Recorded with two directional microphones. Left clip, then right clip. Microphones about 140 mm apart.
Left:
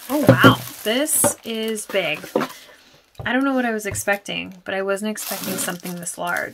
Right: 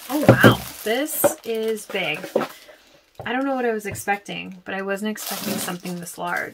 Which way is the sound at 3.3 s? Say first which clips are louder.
Left 1 dB; 50° left (ahead or behind).